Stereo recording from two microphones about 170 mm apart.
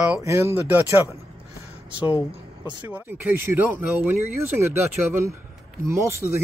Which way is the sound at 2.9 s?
10° right (ahead or behind).